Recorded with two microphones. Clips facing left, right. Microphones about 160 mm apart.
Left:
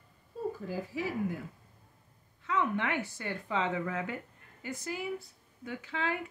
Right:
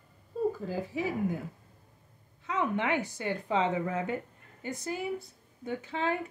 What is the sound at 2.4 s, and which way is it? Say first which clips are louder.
Speech: right 1 dB; 20° right (ahead or behind).